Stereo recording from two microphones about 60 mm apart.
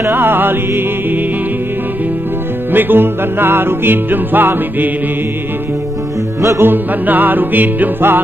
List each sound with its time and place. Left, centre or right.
0.0 s music: right
2.7 s music: right
6.6 s music: right